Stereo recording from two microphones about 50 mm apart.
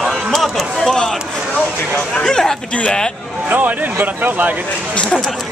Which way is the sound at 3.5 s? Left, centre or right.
Right.